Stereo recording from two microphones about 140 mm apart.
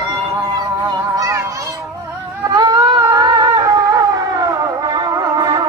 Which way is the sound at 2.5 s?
30° right (ahead or behind).